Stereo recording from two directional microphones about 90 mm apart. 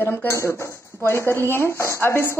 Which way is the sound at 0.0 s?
25° left (ahead or behind).